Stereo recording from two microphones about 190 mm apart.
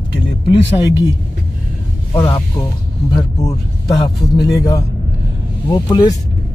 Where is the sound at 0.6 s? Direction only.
25° left (ahead or behind).